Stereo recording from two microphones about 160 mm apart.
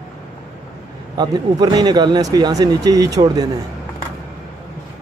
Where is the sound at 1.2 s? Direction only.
25° right (ahead or behind).